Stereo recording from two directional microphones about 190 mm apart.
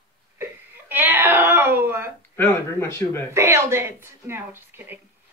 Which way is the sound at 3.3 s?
15° right (ahead or behind).